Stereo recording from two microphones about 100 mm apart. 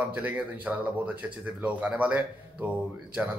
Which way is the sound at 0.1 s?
15° right (ahead or behind).